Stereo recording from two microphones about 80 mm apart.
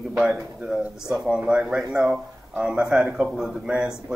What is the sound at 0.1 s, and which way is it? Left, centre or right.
A man's voice, centre.